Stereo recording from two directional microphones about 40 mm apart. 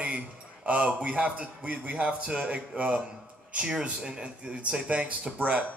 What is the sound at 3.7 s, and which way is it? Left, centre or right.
Speech, centre.